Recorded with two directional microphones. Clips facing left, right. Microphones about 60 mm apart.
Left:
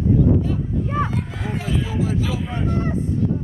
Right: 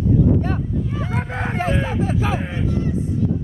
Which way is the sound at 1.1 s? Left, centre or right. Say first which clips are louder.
Right 3 dB; right.